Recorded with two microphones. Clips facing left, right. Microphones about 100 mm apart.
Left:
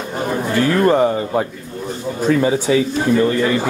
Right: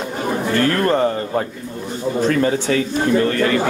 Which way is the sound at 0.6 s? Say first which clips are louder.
Left 4 dB; 15° left (ahead or behind).